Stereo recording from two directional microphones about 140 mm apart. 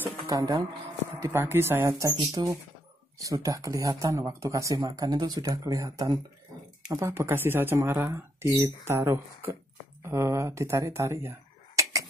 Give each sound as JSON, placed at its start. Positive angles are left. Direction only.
{"t": 0.3, "sound": "speech", "side_deg": -30}
{"t": 1.2, "sound": "speech", "side_deg": -15}